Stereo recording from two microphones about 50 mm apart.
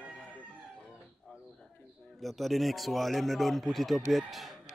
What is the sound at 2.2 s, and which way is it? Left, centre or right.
Speech, centre.